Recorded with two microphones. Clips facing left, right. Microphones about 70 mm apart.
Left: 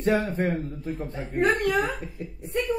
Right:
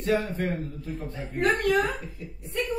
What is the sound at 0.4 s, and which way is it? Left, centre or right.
Speech, centre.